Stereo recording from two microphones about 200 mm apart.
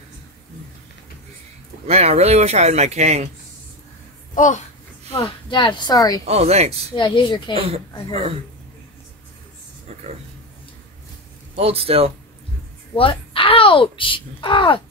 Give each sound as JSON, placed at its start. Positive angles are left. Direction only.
{"t": 1.9, "sound": "speech", "side_deg": -30}
{"t": 4.4, "sound": "a child's voice", "side_deg": 40}
{"t": 5.1, "sound": "a woman's voice", "side_deg": 25}
{"t": 6.2, "sound": "speech", "side_deg": -30}
{"t": 7.0, "sound": "a woman's voice", "side_deg": 25}
{"t": 7.5, "sound": "speech", "side_deg": -30}
{"t": 11.5, "sound": "speech", "side_deg": -30}
{"t": 12.9, "sound": "a child's voice", "side_deg": 25}